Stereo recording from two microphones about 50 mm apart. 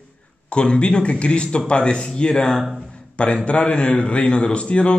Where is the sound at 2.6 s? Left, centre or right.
Centre.